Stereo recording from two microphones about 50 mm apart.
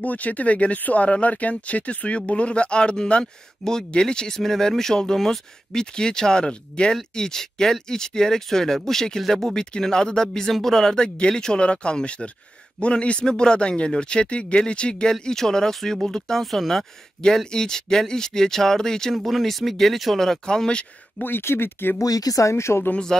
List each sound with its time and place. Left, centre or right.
0.0 s speech: left; by 19.1 s centre
19.1 s speech: centre
21.2 s speech: left
21.9 s speech: left